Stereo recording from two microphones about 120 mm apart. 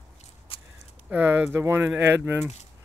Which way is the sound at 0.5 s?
50° left (ahead or behind).